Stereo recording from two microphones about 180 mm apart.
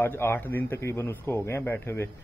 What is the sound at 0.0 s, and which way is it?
A man's voice, 10° left (ahead or behind).